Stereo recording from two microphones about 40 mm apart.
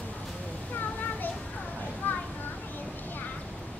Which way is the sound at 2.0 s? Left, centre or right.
Left.